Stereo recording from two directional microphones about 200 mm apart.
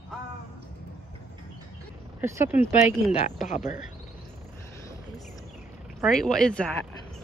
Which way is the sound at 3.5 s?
40° left (ahead or behind).